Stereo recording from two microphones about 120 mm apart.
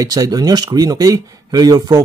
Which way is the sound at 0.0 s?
30° right (ahead or behind).